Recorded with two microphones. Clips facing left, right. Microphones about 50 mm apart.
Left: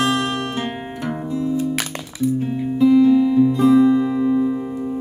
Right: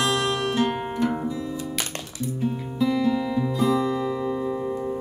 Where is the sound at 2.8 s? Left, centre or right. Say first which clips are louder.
Left 10 dB; left.